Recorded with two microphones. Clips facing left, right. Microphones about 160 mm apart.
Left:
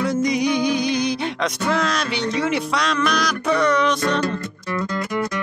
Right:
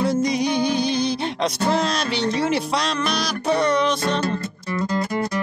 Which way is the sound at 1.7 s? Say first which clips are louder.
Left 1 dB; 30° right (ahead or behind).